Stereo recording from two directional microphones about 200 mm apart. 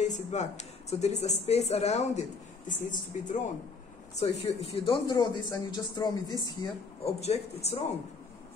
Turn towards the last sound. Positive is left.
turn(degrees=30)  # may be behind; listen again after turning